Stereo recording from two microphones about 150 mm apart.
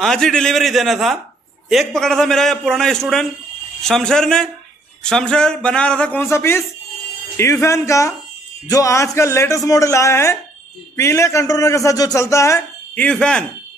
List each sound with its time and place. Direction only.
0.0 s a man's voice: 5° left (ahead or behind)